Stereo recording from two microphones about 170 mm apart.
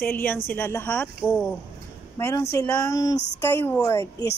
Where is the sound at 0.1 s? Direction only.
10° left (ahead or behind).